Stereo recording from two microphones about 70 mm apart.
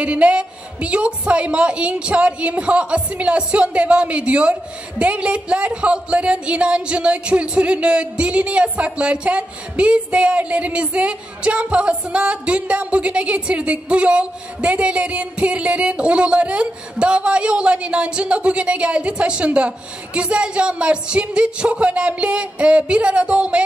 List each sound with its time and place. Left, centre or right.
0.0 s a woman's voice: centre